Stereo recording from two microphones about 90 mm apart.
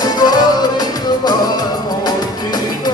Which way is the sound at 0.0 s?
50° left (ahead or behind).